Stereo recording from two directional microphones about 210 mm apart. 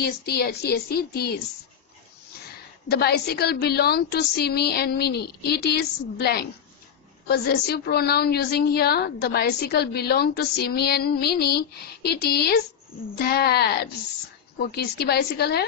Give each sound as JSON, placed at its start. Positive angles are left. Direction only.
{"t": 0.0, "sound": "a woman's voice", "side_deg": 50}
{"t": 2.9, "sound": "a woman's voice", "side_deg": 50}